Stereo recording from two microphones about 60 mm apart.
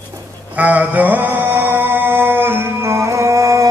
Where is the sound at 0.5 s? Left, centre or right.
Right.